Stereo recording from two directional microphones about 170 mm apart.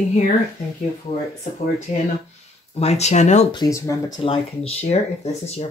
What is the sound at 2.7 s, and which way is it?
Speech, 40° left (ahead or behind).